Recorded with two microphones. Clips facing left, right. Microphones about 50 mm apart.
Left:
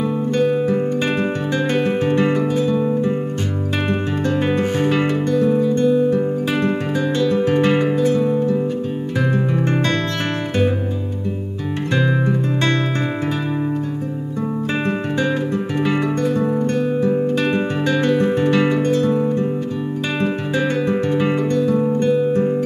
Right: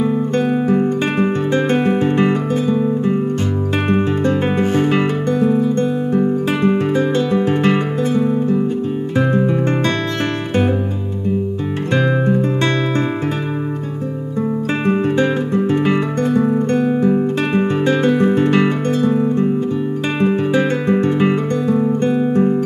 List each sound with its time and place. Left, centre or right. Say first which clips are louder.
1.5 s music: right 1 dB; right
3.9 s music: right 5 dB; right
14.9 s guitar: right 7 dB; centre
16.5 s music: right 3 dB; right
17.1 s guitar: right 1 dB; centre
18.5 s music: right 1 dB; right
20.2 s music: right 6 dB; centre